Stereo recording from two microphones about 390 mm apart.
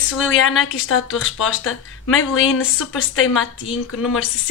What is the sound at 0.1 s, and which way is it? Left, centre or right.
Speech, left.